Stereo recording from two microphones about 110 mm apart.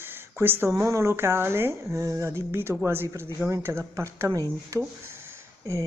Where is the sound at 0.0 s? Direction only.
20° right (ahead or behind).